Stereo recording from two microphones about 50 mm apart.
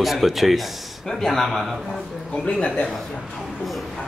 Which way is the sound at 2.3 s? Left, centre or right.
Left.